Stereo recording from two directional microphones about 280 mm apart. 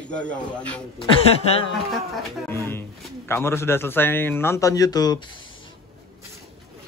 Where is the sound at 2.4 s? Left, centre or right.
Centre.